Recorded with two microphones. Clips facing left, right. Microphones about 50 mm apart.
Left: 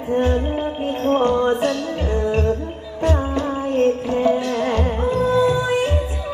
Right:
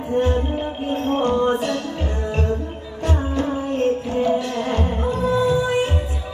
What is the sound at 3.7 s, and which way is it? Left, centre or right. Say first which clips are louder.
Music: left 3 dB; left.